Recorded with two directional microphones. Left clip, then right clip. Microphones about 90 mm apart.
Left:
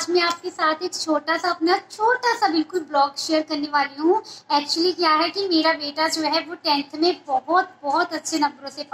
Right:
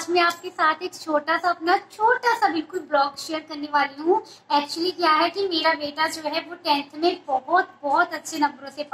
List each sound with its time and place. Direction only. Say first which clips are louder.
0.1 s a woman's voice: right 1 dB; 10° left (ahead or behind)
2.3 s a woman's voice: left 1 dB; 40° right (ahead or behind)